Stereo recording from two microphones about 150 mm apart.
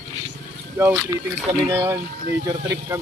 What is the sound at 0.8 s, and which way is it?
Speech, 20° right (ahead or behind).